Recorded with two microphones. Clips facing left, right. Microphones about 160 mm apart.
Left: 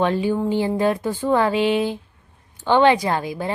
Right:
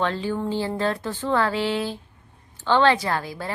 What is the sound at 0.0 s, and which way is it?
A woman's voice, 15° left (ahead or behind).